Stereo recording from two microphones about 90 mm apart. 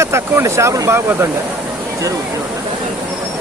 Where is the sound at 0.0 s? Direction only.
30° right (ahead or behind).